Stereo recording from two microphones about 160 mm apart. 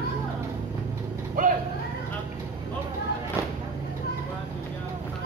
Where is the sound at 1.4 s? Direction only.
55° right (ahead or behind).